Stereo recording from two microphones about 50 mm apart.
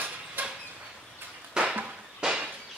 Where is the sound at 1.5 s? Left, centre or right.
Centre.